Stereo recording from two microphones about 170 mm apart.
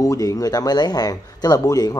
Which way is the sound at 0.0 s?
20° left (ahead or behind).